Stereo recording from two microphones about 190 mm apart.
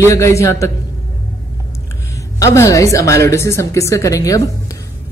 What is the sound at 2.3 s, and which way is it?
Speech, 15° left (ahead or behind).